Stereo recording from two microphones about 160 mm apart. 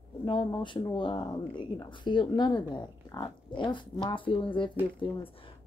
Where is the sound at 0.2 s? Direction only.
30° left (ahead or behind).